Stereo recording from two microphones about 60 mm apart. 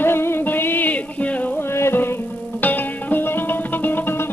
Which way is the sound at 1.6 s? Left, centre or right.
Left.